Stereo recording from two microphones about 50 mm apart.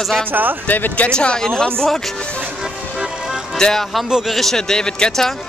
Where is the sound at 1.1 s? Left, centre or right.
Centre.